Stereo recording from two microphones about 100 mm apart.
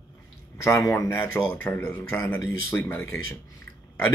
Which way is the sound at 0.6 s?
30° left (ahead or behind).